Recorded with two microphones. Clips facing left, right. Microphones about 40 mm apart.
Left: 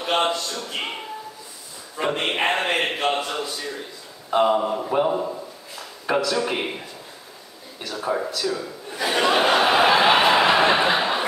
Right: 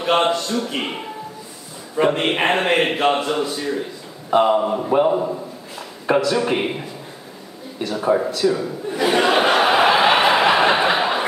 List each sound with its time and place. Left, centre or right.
0.1 s a man's voice: centre
2.0 s a man's voice: centre
8.9 s a sound: centre